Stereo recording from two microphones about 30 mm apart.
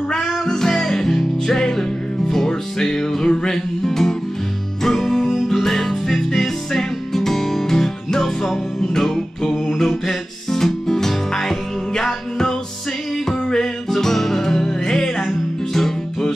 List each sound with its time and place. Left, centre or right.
0.5 s music: centre